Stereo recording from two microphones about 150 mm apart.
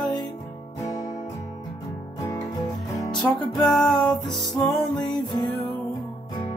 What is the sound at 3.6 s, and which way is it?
Music, 5° left (ahead or behind).